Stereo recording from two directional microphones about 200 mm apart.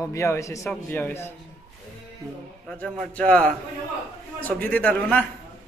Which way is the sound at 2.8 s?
5° left (ahead or behind).